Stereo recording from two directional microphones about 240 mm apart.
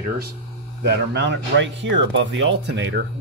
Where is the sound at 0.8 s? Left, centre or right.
Right.